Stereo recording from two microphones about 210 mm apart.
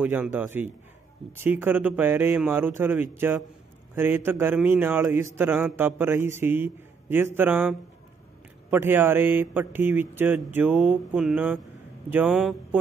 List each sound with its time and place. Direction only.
0.0 s a man's voice: 5° right (ahead or behind)